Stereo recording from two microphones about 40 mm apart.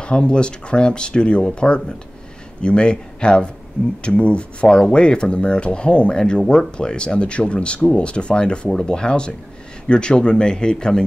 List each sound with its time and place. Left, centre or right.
0.0 s speech: left